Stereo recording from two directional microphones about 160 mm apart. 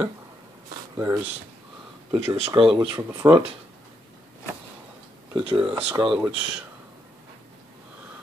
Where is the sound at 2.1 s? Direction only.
35° right (ahead or behind).